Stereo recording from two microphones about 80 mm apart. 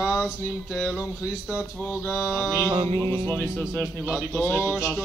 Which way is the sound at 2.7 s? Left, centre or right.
Right.